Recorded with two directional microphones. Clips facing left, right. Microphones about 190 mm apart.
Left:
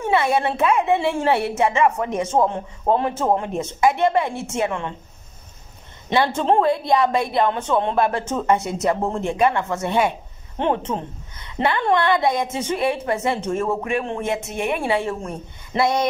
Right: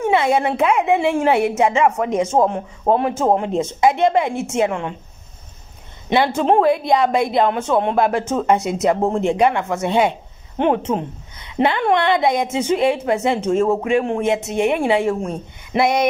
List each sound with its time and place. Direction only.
0.0 s a woman's voice: 15° right (ahead or behind)
6.0 s a woman's voice: 10° right (ahead or behind)
11.4 s a woman's voice: 15° right (ahead or behind)